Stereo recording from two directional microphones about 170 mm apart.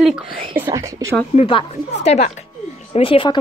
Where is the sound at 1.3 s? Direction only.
35° left (ahead or behind).